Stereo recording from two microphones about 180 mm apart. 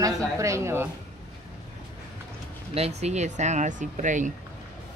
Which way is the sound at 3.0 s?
40° right (ahead or behind).